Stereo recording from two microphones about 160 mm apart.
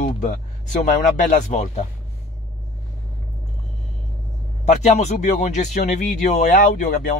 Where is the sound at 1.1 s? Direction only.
50° left (ahead or behind).